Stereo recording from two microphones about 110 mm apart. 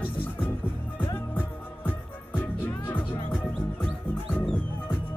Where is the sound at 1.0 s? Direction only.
20° left (ahead or behind).